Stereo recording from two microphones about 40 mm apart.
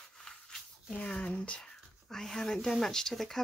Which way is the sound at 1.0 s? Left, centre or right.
Left.